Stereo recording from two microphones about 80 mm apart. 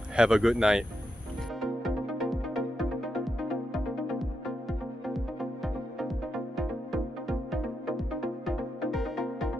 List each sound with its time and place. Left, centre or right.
0.1 s speech: centre
1.6 s music: centre